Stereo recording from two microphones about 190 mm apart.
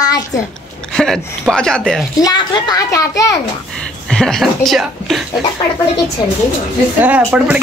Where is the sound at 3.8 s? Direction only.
5° left (ahead or behind).